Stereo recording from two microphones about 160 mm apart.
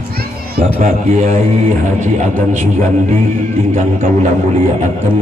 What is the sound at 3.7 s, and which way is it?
Speech, 50° right (ahead or behind).